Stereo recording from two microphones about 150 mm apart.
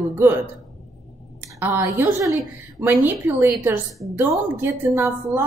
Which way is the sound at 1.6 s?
15° right (ahead or behind).